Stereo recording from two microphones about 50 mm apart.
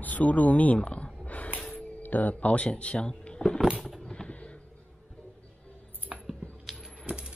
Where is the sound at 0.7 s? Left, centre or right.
Left.